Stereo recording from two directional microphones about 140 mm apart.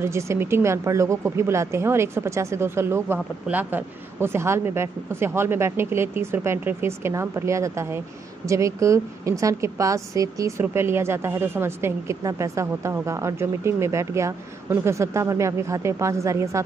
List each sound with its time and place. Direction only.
0.0 s speech: 20° right (ahead or behind)